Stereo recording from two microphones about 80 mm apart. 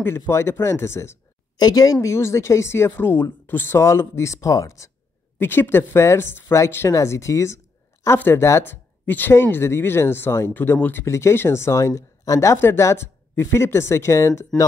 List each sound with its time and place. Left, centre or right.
0.0 s speech: left
1.6 s a woman's voice: left
2.0 s speech: left
5.4 s speech: left